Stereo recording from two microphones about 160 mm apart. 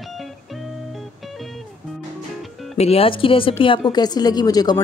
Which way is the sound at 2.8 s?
40° left (ahead or behind).